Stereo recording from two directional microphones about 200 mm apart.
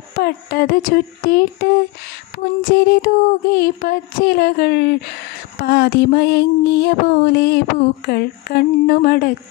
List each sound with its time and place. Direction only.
0.2 s speech: 50° left (ahead or behind)